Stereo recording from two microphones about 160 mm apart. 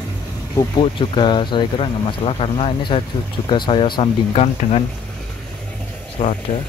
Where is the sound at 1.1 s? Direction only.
30° left (ahead or behind).